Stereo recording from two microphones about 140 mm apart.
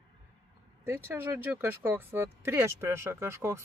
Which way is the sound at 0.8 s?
15° right (ahead or behind).